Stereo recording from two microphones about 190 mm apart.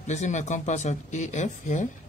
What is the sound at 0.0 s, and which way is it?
Speech, 40° left (ahead or behind).